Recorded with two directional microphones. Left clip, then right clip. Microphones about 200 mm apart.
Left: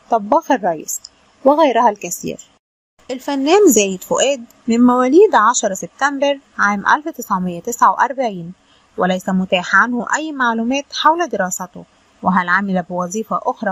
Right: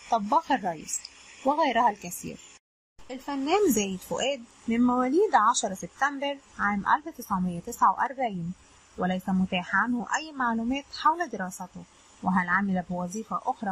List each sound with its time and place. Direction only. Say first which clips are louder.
0.1 s a woman's voice: left 10 dB; 35° left (ahead or behind)